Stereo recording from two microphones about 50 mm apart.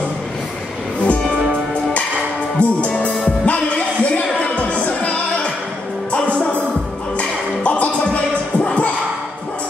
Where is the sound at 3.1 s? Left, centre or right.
Centre.